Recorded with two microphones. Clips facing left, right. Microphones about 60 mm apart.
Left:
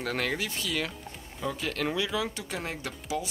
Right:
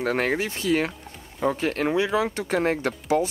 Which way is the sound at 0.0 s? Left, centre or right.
Right.